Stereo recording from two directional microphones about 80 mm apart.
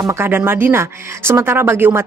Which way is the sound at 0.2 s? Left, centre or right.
Right.